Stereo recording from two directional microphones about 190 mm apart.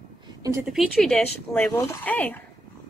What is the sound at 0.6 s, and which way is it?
Speech, centre (ahead or behind).